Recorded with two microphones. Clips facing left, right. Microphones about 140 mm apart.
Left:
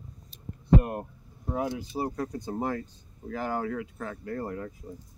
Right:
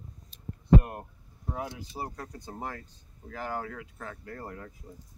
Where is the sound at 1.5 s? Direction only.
20° left (ahead or behind).